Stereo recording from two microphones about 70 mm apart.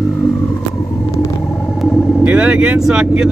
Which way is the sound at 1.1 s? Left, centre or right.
Left.